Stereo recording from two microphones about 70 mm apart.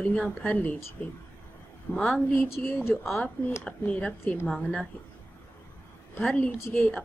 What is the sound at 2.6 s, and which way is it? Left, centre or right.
A woman's voice, left.